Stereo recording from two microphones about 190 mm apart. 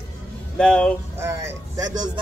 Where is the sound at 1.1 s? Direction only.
15° right (ahead or behind).